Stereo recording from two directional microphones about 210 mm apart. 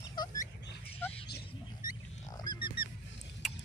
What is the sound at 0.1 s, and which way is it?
Bird, 20° left (ahead or behind).